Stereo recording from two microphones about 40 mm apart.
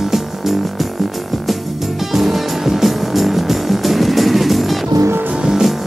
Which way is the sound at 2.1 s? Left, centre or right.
Centre.